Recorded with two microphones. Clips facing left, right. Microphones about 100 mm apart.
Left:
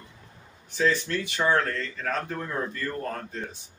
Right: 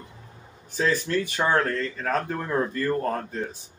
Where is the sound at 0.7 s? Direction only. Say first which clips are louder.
Even; 45° right (ahead or behind).